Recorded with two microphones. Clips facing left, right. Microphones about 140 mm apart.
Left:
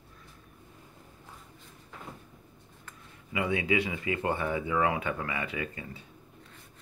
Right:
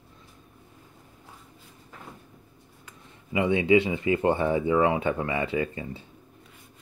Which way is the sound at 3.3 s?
25° right (ahead or behind).